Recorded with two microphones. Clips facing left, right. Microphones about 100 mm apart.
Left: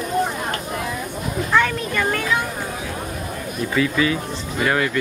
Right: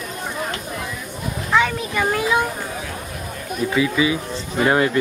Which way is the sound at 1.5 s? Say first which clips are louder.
Right 1 dB; 5° right (ahead or behind).